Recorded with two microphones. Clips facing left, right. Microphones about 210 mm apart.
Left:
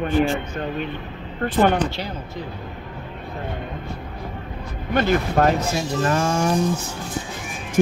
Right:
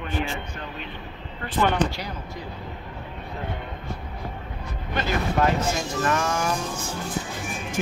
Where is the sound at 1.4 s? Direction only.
50° left (ahead or behind).